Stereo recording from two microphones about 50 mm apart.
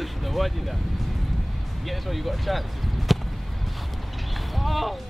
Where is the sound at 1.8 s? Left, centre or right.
Centre.